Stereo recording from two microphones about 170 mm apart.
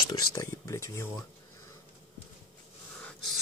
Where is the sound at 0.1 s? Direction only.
20° left (ahead or behind).